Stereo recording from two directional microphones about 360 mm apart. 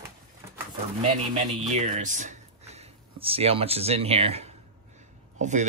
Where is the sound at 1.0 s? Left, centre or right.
Centre.